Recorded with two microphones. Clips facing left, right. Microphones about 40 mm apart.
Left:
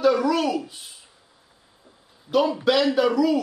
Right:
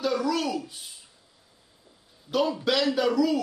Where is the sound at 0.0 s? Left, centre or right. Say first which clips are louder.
Left 6 dB; centre.